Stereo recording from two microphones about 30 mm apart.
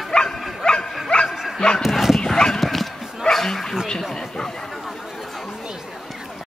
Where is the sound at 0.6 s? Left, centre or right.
Left.